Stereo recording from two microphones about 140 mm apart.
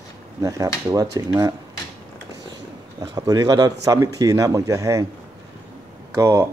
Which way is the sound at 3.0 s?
25° right (ahead or behind).